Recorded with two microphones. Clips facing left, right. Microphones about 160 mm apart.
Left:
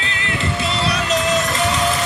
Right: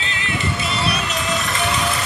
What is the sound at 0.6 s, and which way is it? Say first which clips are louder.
Music: left 2 dB; 90° left.